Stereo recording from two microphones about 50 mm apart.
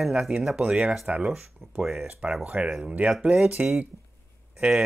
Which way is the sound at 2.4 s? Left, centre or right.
Right.